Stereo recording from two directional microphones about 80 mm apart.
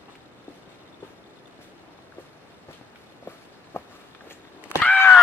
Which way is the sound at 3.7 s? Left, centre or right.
Left.